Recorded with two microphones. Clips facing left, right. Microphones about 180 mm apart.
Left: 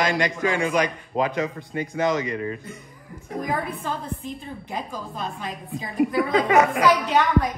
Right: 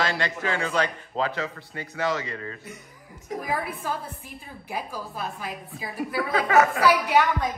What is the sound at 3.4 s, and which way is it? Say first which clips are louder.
A woman's voice: left 3 dB; 5° right (ahead or behind).